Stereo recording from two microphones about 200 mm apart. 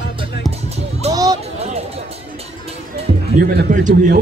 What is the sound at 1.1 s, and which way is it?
Music, 20° right (ahead or behind).